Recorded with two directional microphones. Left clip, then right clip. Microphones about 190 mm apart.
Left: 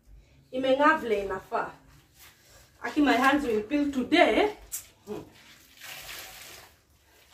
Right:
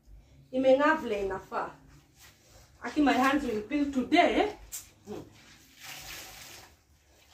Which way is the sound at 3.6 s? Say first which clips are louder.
Left 2 dB; 20° left (ahead or behind).